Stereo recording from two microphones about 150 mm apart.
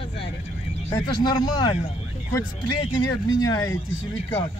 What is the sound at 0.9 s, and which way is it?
Speech, 25° left (ahead or behind).